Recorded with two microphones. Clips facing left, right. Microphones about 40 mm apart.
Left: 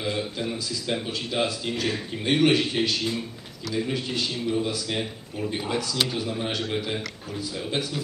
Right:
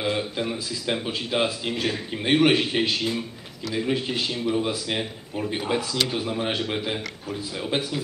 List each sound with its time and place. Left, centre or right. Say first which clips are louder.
0.0 s a man's voice: right 2 dB; centre